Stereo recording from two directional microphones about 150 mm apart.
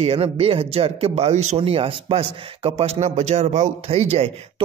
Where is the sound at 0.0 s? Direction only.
40° right (ahead or behind).